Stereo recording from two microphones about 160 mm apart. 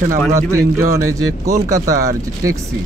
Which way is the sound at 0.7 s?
20° right (ahead or behind).